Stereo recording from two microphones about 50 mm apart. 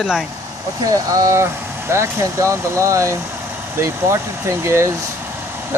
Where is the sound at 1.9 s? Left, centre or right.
Right.